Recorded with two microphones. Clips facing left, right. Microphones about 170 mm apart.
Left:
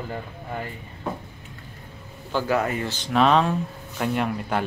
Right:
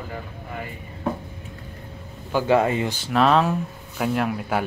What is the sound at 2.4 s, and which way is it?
Speech, 25° right (ahead or behind).